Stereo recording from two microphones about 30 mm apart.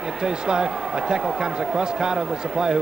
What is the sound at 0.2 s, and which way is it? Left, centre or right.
Speech, right.